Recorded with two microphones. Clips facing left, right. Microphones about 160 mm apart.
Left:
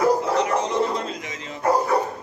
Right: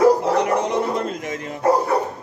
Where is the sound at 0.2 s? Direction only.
60° right (ahead or behind).